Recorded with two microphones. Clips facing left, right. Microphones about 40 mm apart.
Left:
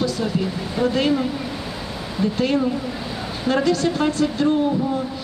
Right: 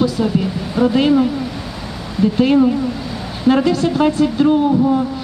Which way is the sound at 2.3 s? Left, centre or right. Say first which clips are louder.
Right 9 dB; centre.